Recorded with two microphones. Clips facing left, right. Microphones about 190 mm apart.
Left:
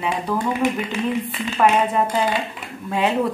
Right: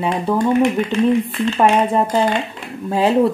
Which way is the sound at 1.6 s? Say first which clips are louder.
Right 2 dB; 30° right (ahead or behind).